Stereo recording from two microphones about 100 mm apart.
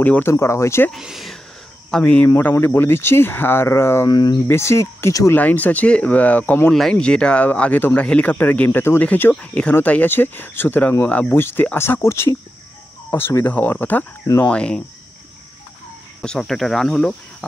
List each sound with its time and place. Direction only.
0.0 s speech: 15° left (ahead or behind)
0.3 s speech: 30° left (ahead or behind)
0.9 s speech: centre (ahead or behind)
1.9 s speech: 10° left (ahead or behind)
2.2 s speech: 25° left (ahead or behind)
4.1 s speech: 45° left (ahead or behind)
4.5 s speech: 25° left (ahead or behind)
5.3 s speech: 15° left (ahead or behind)
6.7 s speech: 5° left (ahead or behind)
14.2 s cricket: 35° left (ahead or behind)
14.5 s speech: 10° left (ahead or behind)
16.2 s speech: 5° left (ahead or behind)